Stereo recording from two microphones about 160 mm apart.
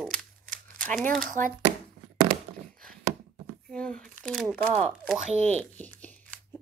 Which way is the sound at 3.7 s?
5° left (ahead or behind).